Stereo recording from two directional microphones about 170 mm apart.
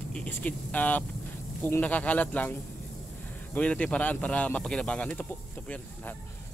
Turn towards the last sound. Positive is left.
turn(degrees=10)  # may be behind; listen again after turning